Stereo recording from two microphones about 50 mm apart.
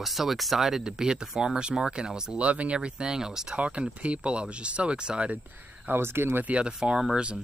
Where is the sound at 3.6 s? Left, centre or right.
Right.